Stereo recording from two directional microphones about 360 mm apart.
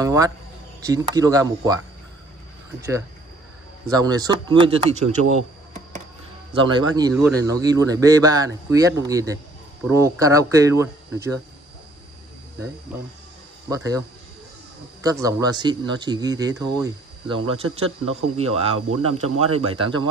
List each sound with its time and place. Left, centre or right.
0.0 s a man's voice: centre
3.8 s a man's voice: centre
6.5 s a man's voice: centre
13.7 s a man's voice: centre